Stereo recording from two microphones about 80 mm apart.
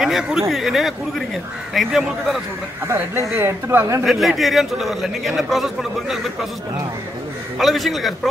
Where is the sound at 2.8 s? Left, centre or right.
Right.